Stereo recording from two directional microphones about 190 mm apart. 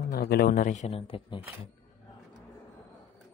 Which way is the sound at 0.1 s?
55° left (ahead or behind).